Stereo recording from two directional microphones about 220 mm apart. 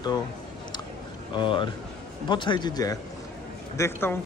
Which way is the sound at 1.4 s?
20° left (ahead or behind).